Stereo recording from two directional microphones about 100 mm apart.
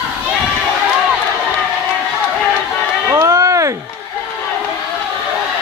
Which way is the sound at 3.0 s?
30° right (ahead or behind).